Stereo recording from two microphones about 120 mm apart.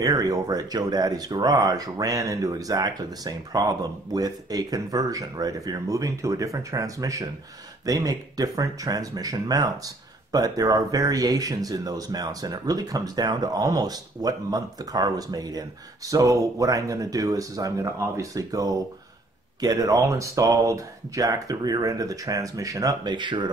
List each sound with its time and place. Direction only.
0.0 s speech: 30° right (ahead or behind)